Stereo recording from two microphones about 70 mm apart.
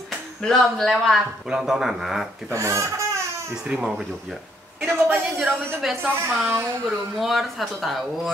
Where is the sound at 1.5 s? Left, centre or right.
Centre.